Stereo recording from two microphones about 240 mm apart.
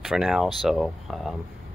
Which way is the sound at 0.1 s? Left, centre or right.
Centre.